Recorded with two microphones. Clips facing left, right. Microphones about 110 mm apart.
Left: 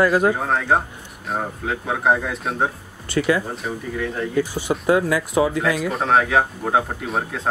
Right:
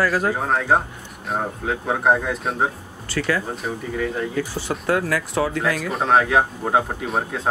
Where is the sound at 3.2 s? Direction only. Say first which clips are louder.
Left 3 dB; 15° left (ahead or behind).